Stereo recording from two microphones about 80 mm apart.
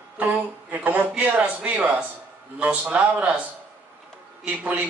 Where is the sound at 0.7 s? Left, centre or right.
Right.